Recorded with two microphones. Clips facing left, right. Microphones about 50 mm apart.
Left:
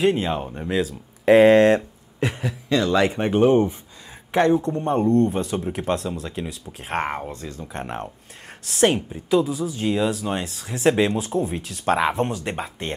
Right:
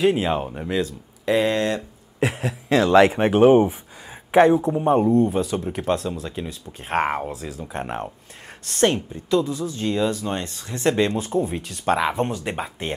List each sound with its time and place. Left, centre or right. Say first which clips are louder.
0.0 s speech: right 1 dB; centre
1.2 s speech: left 8 dB; left
2.1 s a sound: right 2 dB; centre
3.0 s speech: right 6 dB; right
4.3 s a woman's voice: right 3 dB; centre